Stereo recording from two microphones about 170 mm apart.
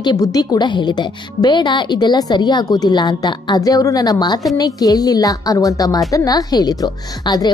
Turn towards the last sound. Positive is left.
turn(degrees=25)  # may be behind; listen again after turning